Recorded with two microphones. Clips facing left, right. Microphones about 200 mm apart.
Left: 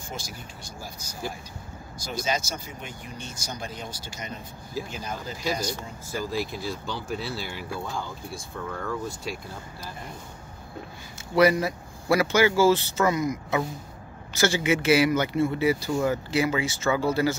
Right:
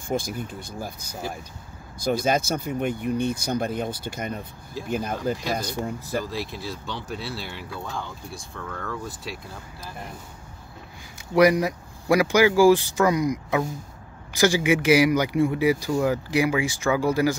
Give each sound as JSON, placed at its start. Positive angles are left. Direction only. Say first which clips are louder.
{"t": 0.1, "sound": "speech", "louder": "right 12 dB", "side_deg": -55}
{"t": 6.3, "sound": "speech", "louder": "left 2 dB", "side_deg": 0}
{"t": 11.1, "sound": "speech", "louder": "right 2 dB", "side_deg": -15}